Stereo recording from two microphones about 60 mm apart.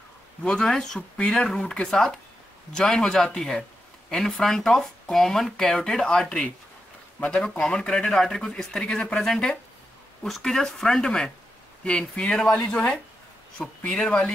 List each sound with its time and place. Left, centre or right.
0.4 s speech: centre